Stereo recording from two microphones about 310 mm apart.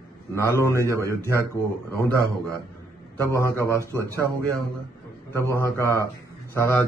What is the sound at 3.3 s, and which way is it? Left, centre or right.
Speech, centre.